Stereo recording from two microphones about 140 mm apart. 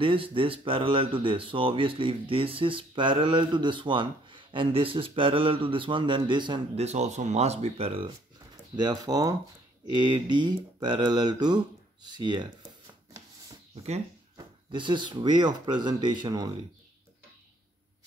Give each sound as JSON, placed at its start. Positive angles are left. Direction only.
{"t": 0.0, "sound": "speech", "side_deg": -40}
{"t": 6.8, "sound": "speech", "side_deg": -50}
{"t": 8.7, "sound": "speech", "side_deg": -30}
{"t": 14.3, "sound": "speech", "side_deg": -35}